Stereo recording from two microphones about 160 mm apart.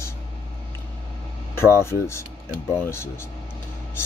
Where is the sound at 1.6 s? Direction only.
15° left (ahead or behind).